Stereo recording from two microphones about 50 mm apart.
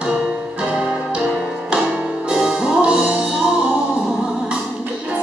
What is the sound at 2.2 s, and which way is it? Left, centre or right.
Music, centre.